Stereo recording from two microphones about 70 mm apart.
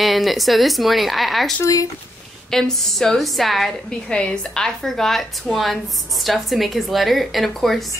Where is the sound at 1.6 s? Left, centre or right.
Left.